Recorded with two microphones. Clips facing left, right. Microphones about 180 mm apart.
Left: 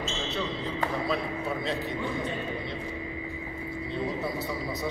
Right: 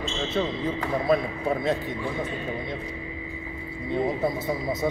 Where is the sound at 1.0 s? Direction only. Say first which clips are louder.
Right 6 dB; 50° right (ahead or behind).